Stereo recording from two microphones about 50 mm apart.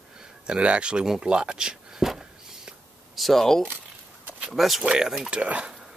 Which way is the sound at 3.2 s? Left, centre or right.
Centre.